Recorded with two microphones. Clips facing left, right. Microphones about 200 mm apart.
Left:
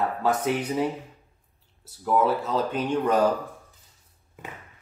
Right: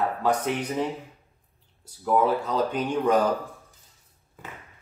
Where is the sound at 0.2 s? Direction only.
5° left (ahead or behind).